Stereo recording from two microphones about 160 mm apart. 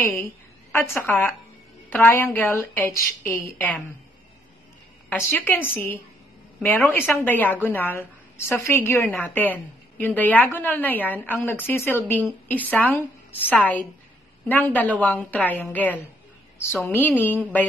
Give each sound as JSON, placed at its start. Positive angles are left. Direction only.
{"t": 0.1, "sound": "a woman's voice", "side_deg": 10}
{"t": 5.3, "sound": "a woman's voice", "side_deg": 10}